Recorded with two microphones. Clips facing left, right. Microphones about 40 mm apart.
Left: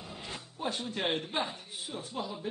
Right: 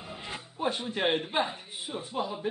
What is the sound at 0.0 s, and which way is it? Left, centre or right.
Speech, centre.